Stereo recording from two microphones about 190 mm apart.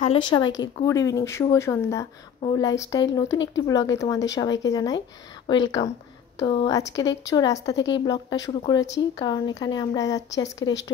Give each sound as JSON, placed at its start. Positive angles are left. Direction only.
{"t": 0.0, "sound": "speech", "side_deg": 30}